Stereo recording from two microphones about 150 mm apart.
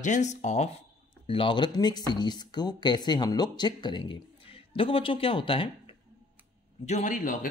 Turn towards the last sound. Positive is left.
turn(degrees=60)  # may be behind; listen again after turning